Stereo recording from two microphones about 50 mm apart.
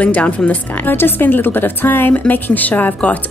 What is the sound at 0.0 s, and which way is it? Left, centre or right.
A woman's voice, left.